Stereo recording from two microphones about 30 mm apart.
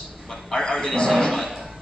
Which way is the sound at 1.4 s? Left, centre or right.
Centre.